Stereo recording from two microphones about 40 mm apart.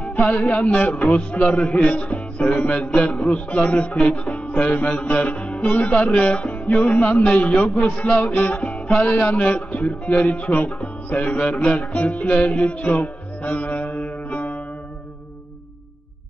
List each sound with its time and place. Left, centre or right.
0.3 s music: left
7.5 s a man's voice: left
8.2 s music: left
11.9 s a man's voice: left
12.3 s music: left